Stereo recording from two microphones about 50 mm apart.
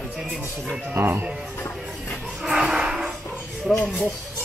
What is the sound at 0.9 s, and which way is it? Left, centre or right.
Speech, right.